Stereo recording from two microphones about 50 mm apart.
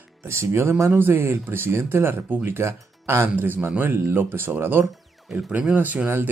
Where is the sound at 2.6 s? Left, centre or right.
Right.